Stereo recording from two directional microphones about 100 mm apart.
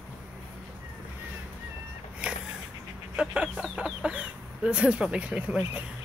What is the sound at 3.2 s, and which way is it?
Speech, 10° right (ahead or behind).